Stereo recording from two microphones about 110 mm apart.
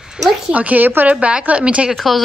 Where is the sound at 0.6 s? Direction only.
15° right (ahead or behind).